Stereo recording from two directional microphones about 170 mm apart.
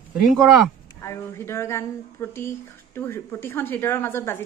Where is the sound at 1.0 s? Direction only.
15° left (ahead or behind).